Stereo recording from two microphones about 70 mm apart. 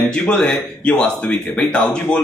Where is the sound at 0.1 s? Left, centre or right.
Centre.